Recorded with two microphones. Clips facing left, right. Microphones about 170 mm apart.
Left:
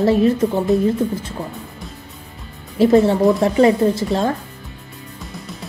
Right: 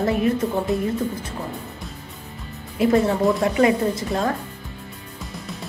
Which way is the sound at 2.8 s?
30° left (ahead or behind).